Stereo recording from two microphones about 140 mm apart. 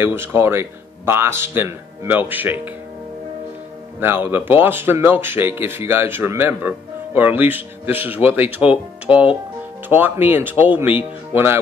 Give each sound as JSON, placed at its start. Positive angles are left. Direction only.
{"t": 0.0, "sound": "speech", "side_deg": -15}
{"t": 4.0, "sound": "speech", "side_deg": -15}